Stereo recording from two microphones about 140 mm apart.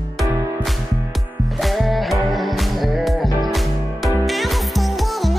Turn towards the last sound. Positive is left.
turn(degrees=0)  # may be behind; listen again after turning